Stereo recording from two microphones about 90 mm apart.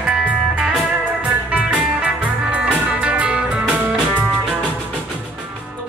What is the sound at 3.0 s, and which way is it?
Music, 15° right (ahead or behind).